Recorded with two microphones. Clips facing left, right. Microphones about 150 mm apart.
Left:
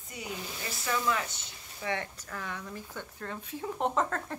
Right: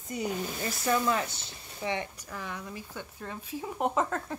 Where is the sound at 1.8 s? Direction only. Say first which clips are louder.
Right 2 dB; 20° right (ahead or behind).